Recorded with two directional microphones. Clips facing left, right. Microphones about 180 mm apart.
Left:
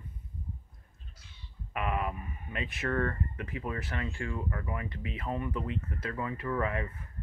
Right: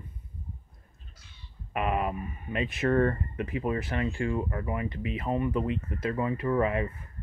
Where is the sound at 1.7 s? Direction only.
20° right (ahead or behind).